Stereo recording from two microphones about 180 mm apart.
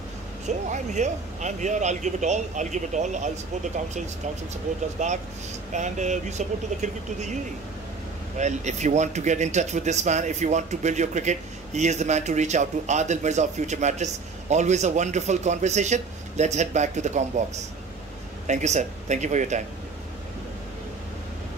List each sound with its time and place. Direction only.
0.5 s speech: 40° right (ahead or behind)
8.4 s speech: 40° right (ahead or behind)
18.5 s speech: 40° right (ahead or behind)